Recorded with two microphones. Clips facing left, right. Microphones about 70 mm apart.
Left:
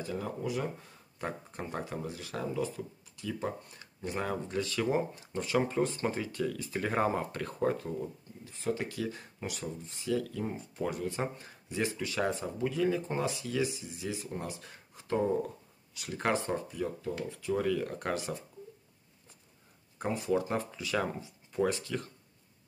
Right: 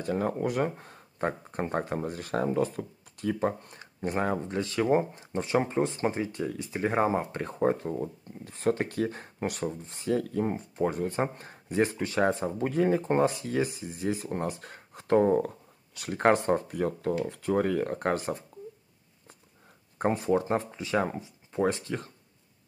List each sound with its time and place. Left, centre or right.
0.0 s speech: right
20.0 s speech: right